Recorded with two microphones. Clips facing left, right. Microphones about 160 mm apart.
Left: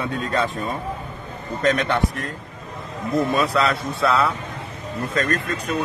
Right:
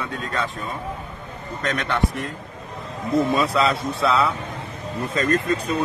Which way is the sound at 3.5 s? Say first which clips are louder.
Even; centre (ahead or behind).